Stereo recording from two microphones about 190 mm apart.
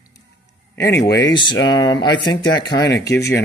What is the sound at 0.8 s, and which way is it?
Speech, 15° left (ahead or behind).